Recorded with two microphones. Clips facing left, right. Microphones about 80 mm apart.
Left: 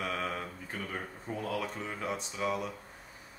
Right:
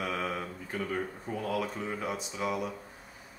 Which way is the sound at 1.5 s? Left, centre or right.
Centre.